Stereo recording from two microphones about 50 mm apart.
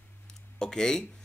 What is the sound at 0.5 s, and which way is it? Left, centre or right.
Speech, centre.